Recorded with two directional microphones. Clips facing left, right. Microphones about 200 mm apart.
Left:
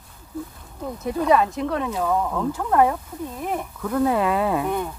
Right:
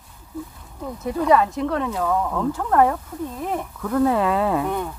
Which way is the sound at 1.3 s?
20° left (ahead or behind).